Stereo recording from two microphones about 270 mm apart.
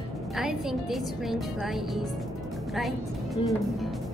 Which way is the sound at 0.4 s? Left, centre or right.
Centre.